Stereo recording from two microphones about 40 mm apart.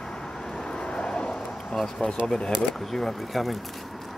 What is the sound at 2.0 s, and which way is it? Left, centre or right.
Speech, left.